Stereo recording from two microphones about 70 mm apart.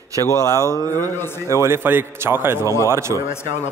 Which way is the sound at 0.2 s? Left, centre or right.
Left.